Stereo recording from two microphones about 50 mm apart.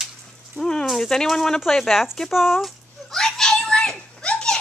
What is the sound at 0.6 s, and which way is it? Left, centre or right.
Sizzle, centre.